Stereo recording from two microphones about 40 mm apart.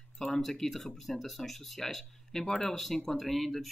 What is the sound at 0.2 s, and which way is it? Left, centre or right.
Speech, centre.